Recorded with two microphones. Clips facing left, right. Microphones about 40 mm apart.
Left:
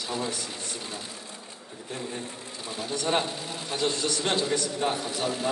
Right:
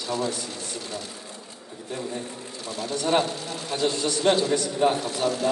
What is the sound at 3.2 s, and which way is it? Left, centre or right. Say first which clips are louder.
A man's voice: right 3 dB; centre.